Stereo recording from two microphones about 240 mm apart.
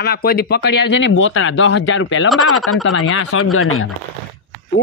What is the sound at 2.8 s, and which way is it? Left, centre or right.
Speech, left.